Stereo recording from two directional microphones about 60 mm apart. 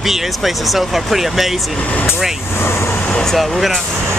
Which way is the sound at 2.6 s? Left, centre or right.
Left.